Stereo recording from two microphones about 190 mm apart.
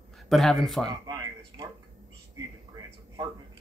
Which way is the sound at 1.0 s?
20° right (ahead or behind).